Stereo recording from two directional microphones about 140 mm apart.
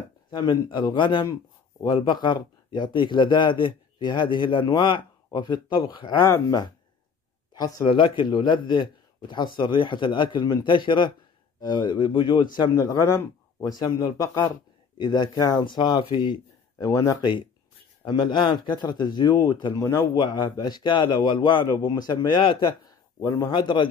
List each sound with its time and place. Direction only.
0.3 s speech: 35° left (ahead or behind)
7.5 s speech: 30° left (ahead or behind)
16.8 s speech: 25° left (ahead or behind)
20.2 s speech: 30° left (ahead or behind)
23.2 s speech: 20° left (ahead or behind)
23.5 s speech: 35° left (ahead or behind)